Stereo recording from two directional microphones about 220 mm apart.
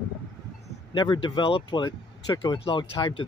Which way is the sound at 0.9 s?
20° left (ahead or behind).